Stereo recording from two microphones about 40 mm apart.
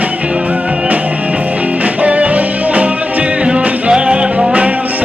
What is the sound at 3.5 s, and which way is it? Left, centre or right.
Music, right.